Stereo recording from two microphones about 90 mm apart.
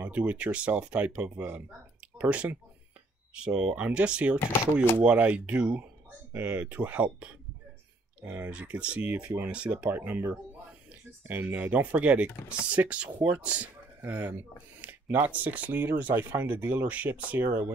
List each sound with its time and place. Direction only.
0.0 s speech: 15° right (ahead or behind)
4.4 s speech: 30° left (ahead or behind)
4.9 s speech: 15° right (ahead or behind)
8.2 s speech: 25° right (ahead or behind)
8.5 s speech: 15° right (ahead or behind)
14.0 s speech: 25° right (ahead or behind)
14.8 s a sound: 20° right (ahead or behind)
15.1 s speech: 20° right (ahead or behind)